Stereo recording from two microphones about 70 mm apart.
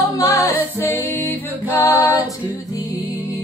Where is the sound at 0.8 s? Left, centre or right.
Left.